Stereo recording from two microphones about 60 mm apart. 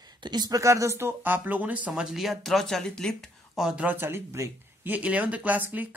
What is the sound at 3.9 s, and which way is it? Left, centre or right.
Speech, right.